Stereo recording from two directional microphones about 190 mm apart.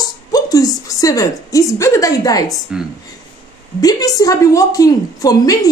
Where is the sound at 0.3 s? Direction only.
20° left (ahead or behind).